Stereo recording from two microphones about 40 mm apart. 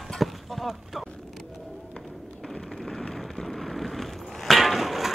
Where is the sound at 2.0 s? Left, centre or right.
Centre.